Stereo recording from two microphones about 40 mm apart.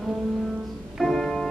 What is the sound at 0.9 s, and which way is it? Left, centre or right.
Music, centre.